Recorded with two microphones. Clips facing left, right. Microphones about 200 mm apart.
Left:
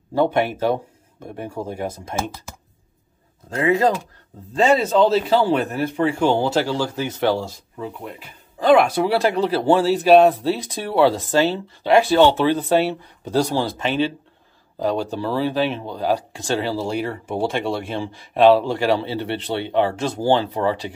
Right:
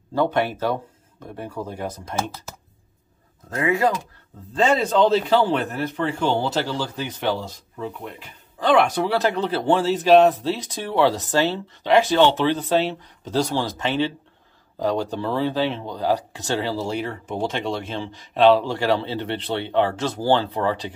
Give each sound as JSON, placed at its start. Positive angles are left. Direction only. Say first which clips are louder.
{"t": 0.1, "sound": "speech", "louder": "left 2 dB", "side_deg": 10}
{"t": 3.4, "sound": "speech", "louder": "left 3 dB", "side_deg": 25}
{"t": 4.6, "sound": "speech", "louder": "left 2 dB", "side_deg": 10}
{"t": 15.1, "sound": "speech", "louder": "left 1 dB", "side_deg": -20}
{"t": 15.5, "sound": "speech", "louder": "left 2 dB", "side_deg": 15}